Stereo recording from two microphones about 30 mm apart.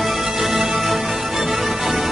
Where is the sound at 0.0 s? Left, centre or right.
Centre.